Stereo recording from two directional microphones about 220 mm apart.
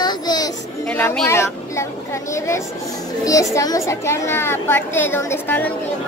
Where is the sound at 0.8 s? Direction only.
5° left (ahead or behind).